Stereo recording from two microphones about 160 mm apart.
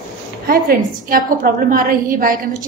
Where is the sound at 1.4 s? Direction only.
60° right (ahead or behind).